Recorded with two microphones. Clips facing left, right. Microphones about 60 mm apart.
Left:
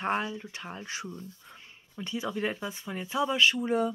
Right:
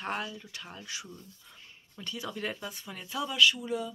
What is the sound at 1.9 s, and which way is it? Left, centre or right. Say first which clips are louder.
Speech: left 5 dB; centre.